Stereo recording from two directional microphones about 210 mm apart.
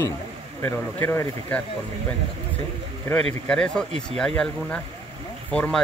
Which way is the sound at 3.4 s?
5° left (ahead or behind).